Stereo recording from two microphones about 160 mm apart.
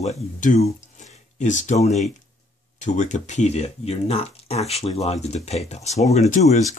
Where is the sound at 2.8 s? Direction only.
50° left (ahead or behind).